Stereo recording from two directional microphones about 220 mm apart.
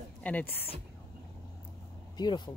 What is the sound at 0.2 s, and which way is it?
Speech, 5° left (ahead or behind).